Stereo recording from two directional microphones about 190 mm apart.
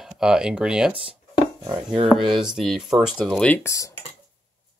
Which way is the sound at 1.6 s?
25° right (ahead or behind).